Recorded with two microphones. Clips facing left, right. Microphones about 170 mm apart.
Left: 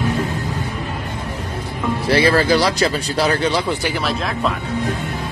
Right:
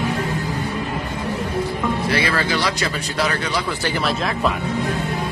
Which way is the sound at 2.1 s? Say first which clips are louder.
Left 11 dB; 35° left (ahead or behind).